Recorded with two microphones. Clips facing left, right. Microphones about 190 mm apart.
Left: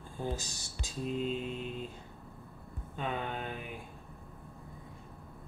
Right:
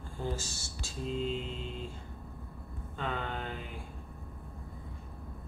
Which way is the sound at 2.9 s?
15° left (ahead or behind).